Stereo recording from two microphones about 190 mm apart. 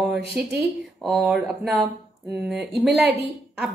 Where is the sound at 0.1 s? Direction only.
60° right (ahead or behind).